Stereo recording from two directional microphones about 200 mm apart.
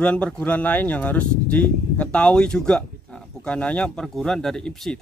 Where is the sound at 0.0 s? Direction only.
5° left (ahead or behind).